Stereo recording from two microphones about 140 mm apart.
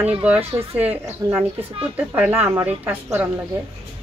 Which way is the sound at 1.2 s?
25° right (ahead or behind).